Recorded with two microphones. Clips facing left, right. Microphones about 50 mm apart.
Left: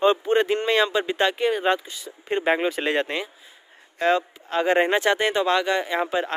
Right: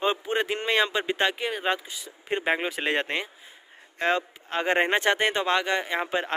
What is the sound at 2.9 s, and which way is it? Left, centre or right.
Speech, right.